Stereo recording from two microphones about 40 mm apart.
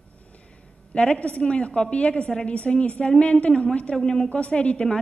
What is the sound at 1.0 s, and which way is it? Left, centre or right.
A woman's voice, left.